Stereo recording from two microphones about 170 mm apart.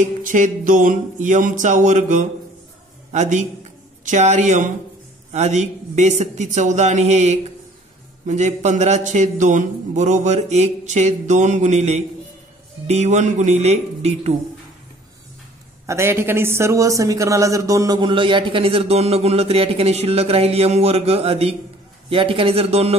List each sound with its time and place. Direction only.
0.0 s a man's voice: 50° right (ahead or behind)
15.9 s a man's voice: 15° right (ahead or behind); by 22.9 s 35° right (ahead or behind)